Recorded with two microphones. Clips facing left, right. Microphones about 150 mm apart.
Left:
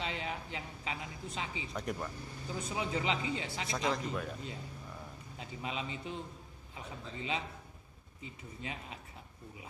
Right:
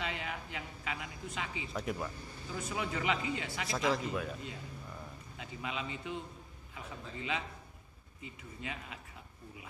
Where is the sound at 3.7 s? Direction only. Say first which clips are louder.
Right 2 dB; 5° right (ahead or behind).